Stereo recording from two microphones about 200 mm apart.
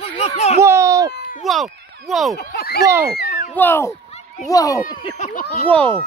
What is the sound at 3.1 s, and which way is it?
Cat, 50° left (ahead or behind).